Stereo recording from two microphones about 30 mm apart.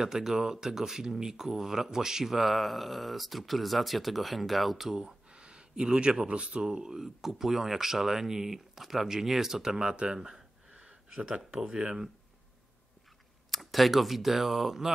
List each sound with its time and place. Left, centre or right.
0.0 s speech: centre
4.9 s speech: right
6.6 s speech: right
7.0 s speech: centre
10.7 s a sound: right
11.6 s speech: right
13.5 s speech: centre